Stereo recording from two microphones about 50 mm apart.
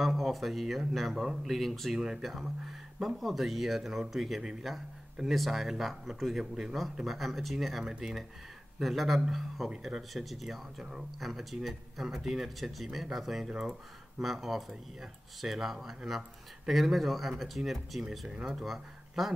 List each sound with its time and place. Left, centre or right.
0.0 s speech: centre
13.5 s speech: centre